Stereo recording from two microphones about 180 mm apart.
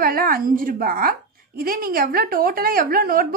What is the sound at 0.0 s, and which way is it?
A woman's voice, 55° right (ahead or behind).